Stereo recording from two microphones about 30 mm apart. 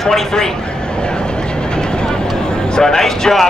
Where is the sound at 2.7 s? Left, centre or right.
Centre.